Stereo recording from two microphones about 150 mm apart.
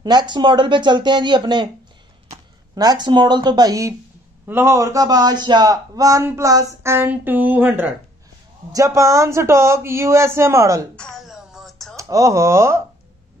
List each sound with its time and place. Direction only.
0.0 s speech: 30° right (ahead or behind)
2.7 s a man's voice: 25° right (ahead or behind)
11.0 s music: centre (ahead or behind)
12.0 s a man's voice: 20° right (ahead or behind)